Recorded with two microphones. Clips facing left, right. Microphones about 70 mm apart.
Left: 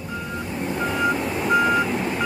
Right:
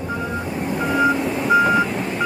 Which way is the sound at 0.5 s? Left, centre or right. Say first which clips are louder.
Right 4 dB; centre.